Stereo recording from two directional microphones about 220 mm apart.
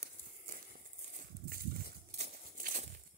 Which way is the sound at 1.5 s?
40° right (ahead or behind).